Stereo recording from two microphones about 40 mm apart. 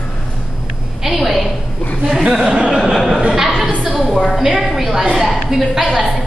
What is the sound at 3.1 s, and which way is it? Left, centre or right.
Chuckle, centre.